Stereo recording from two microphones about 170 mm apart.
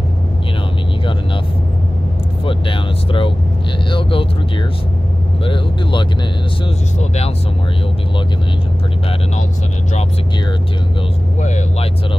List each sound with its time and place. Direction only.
2.4 s vehicle: 30° left (ahead or behind)
5.4 s speech: 30° left (ahead or behind)
11.4 s speech: 40° left (ahead or behind)